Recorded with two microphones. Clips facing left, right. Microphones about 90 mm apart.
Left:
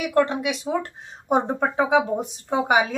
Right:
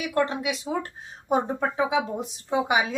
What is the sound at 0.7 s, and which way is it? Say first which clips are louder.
Speech: left 4 dB; 40° left (ahead or behind).